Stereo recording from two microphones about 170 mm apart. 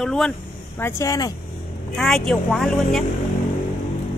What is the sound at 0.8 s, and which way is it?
Speech, 20° left (ahead or behind).